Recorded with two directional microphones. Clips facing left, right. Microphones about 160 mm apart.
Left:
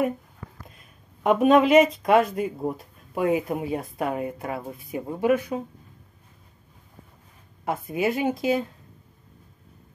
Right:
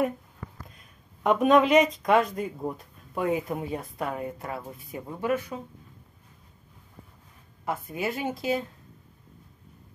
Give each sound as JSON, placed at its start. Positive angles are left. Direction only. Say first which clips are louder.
{"t": 1.2, "sound": "speech", "louder": "left 3 dB", "side_deg": 5}
{"t": 7.6, "sound": "speech", "louder": "left 5 dB", "side_deg": 15}